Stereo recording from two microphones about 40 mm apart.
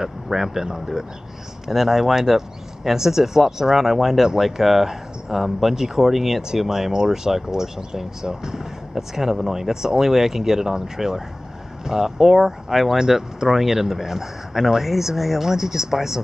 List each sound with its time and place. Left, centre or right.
0.0 s speech: centre